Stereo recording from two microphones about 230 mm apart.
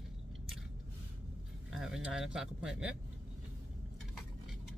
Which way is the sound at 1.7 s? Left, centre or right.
Centre.